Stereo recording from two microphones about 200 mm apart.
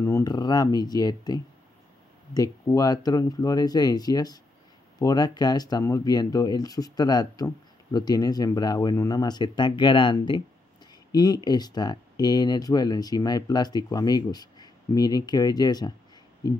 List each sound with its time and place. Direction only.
0.0 s speech: 15° left (ahead or behind)